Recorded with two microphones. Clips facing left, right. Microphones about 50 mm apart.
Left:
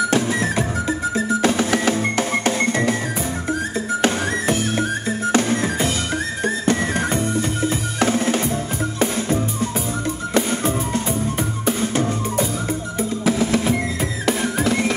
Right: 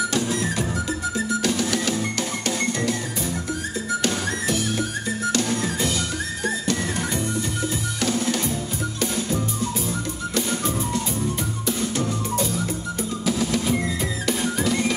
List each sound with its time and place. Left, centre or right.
0.1 s music: left
1.1 s drum: left
4.0 s music: left
13.2 s drum: left